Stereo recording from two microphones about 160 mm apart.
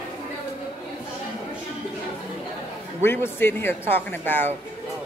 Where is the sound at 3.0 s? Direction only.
15° left (ahead or behind).